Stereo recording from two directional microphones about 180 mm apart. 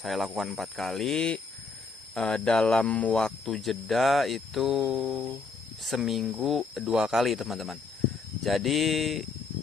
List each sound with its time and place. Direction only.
0.0 s speech: centre (ahead or behind)